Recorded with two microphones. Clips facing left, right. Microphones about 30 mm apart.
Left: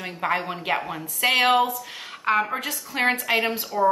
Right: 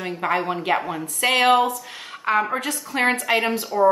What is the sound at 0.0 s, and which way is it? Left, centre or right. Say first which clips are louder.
Speech: right 3 dB; centre.